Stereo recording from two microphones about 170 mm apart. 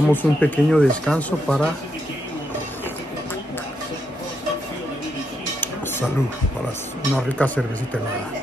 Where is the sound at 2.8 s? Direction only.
10° left (ahead or behind).